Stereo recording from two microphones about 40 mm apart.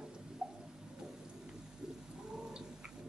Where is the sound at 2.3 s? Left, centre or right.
Centre.